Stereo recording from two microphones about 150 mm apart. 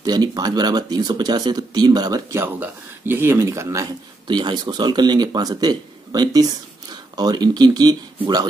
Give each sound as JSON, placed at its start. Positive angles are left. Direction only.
{"t": 0.0, "sound": "speech", "side_deg": -25}
{"t": 2.4, "sound": "speech", "side_deg": -15}